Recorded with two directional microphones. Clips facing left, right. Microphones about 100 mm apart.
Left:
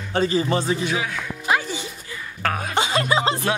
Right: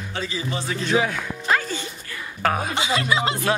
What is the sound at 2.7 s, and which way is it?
Speech, 40° left (ahead or behind).